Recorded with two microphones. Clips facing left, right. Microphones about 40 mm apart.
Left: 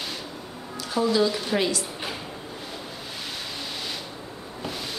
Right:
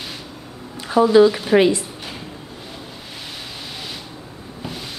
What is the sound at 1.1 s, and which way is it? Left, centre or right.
Speech, centre.